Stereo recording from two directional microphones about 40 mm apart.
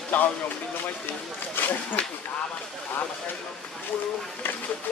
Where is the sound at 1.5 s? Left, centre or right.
Left.